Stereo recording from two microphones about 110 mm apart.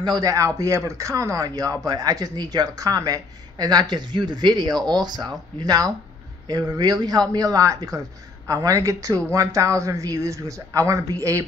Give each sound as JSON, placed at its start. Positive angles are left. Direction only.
{"t": 0.0, "sound": "speech", "side_deg": -35}